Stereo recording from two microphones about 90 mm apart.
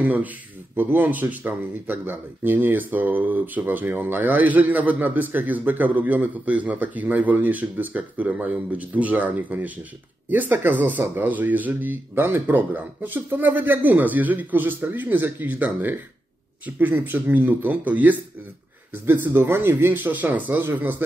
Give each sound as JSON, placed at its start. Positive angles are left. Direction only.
{"t": 0.0, "sound": "speech", "side_deg": -20}